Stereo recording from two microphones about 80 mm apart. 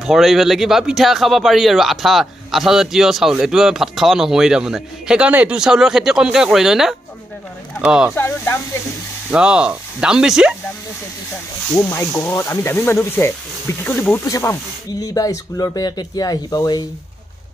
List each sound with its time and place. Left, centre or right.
0.0 s speech: centre
5.6 s speech: centre
8.2 s speech: left
9.3 s speech: centre
11.7 s speech: left
14.2 s speech: left